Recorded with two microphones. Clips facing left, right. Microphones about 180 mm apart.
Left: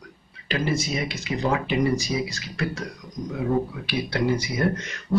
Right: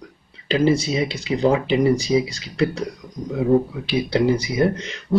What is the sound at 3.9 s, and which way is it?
Speech, 25° right (ahead or behind).